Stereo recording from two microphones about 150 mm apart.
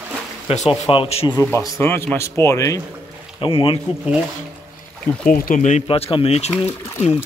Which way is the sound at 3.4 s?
35° left (ahead or behind).